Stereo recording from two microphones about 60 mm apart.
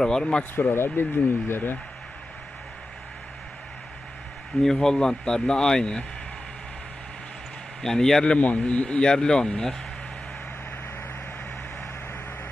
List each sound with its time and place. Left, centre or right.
0.0 s speech: centre
0.6 s speech: left
4.6 s speech: centre
7.8 s speech: centre
8.4 s speech: left